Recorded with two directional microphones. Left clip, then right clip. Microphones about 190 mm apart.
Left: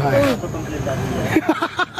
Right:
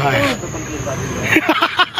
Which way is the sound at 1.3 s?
5° left (ahead or behind).